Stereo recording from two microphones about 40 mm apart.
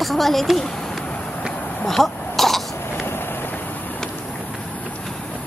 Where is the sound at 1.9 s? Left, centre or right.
Centre.